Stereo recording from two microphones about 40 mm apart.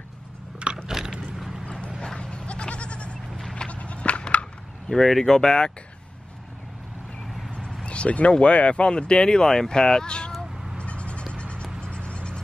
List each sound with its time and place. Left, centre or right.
0.8 s mechanisms: centre
2.1 s bleat: left
3.5 s sheep: left
5.0 s speech: centre
5.4 s speech: left
7.8 s speech: left
10.8 s bleat: left
11.3 s music: left